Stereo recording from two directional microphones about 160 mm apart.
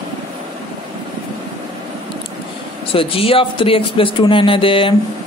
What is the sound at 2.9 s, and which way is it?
Speech, 35° left (ahead or behind).